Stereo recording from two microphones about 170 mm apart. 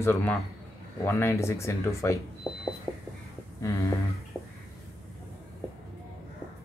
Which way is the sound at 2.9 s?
25° left (ahead or behind).